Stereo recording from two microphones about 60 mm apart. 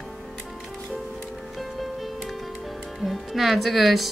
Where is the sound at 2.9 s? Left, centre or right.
Centre.